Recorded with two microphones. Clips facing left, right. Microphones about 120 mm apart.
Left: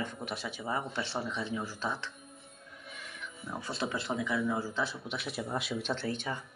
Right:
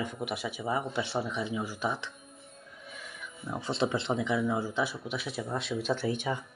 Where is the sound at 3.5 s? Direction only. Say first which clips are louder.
Right 6 dB; 25° right (ahead or behind).